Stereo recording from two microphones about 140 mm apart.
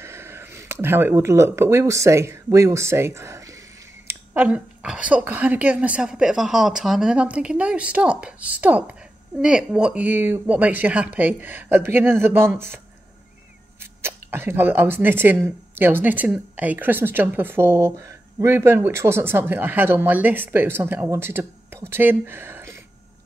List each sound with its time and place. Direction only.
0.0 s speech: 20° right (ahead or behind)
14.0 s speech: 15° right (ahead or behind)